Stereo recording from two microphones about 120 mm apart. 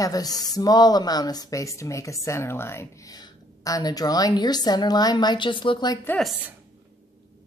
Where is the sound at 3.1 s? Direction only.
30° left (ahead or behind).